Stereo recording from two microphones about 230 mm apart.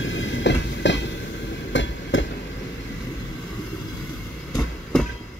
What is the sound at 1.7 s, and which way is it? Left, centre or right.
Hammer, left.